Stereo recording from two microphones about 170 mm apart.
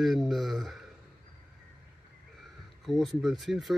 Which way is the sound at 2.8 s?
Centre (ahead or behind).